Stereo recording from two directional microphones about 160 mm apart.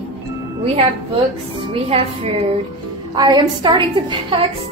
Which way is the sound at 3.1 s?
25° right (ahead or behind).